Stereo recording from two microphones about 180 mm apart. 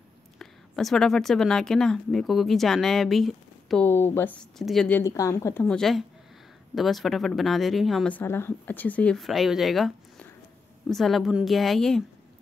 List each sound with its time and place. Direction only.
0.4 s speech: centre (ahead or behind)